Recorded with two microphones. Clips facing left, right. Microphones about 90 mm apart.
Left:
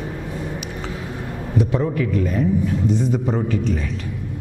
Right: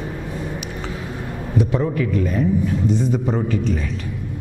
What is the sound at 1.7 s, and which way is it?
A man's voice, 15° right (ahead or behind).